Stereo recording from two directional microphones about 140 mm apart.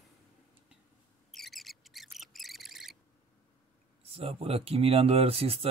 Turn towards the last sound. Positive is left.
turn(degrees=-45)  # may be behind; listen again after turning